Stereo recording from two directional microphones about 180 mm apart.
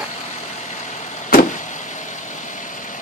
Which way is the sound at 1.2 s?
45° left (ahead or behind).